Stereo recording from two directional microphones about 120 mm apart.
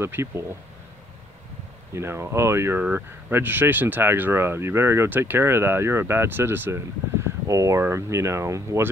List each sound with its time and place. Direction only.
0.0 s speech: 20° right (ahead or behind)
2.0 s speech: 20° right (ahead or behind)